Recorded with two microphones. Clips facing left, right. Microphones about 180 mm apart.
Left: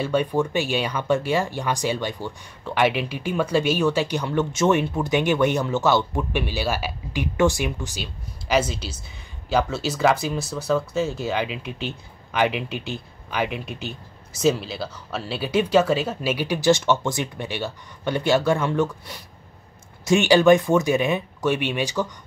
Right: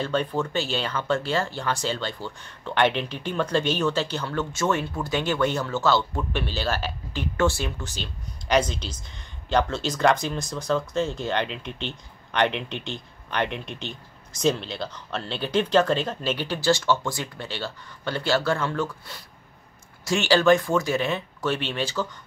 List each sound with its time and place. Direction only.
0.0 s speech: 10° left (ahead or behind)